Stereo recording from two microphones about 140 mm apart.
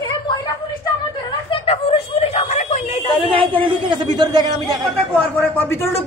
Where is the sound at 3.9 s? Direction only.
30° right (ahead or behind).